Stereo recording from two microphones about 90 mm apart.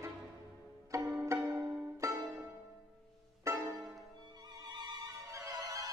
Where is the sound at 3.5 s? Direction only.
35° right (ahead or behind).